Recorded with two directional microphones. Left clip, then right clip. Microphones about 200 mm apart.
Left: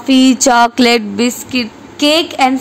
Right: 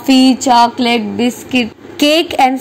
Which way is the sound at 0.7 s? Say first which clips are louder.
Left 3 dB; 75° left (ahead or behind).